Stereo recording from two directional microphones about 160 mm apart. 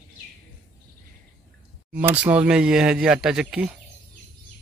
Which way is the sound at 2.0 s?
10° right (ahead or behind).